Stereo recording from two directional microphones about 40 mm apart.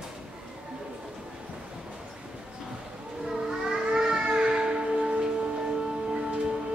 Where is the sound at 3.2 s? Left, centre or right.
Centre.